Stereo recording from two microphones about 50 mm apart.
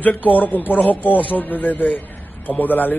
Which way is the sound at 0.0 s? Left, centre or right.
Left.